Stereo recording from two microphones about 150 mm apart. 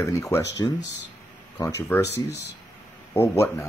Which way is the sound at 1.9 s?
15° left (ahead or behind).